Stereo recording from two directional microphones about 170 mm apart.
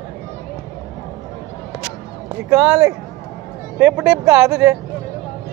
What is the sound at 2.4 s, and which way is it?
Speech, 15° right (ahead or behind).